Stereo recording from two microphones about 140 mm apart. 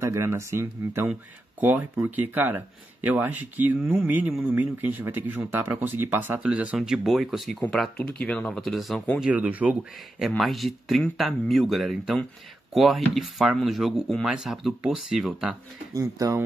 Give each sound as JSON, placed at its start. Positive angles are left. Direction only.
{"t": 0.0, "sound": "speech", "side_deg": -20}
{"t": 9.2, "sound": "speech", "side_deg": -10}
{"t": 15.9, "sound": "speech", "side_deg": -25}